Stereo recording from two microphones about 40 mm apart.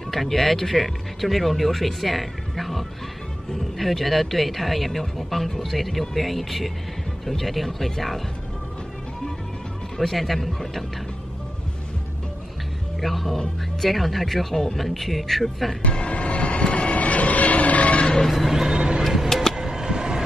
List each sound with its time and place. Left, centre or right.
0.1 s speech: centre
9.9 s speech: centre
13.0 s speech: centre
15.9 s train: left
18.0 s a sound: centre
18.3 s music: centre
18.8 s music: right
19.2 s a sound: centre
19.5 s a sound: centre